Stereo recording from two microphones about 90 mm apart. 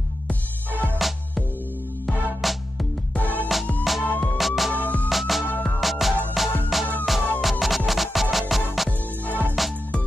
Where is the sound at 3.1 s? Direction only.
20° left (ahead or behind).